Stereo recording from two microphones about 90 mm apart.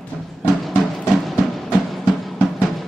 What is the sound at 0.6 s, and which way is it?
Music, centre (ahead or behind).